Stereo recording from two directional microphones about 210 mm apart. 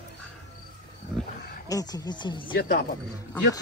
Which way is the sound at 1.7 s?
15° left (ahead or behind).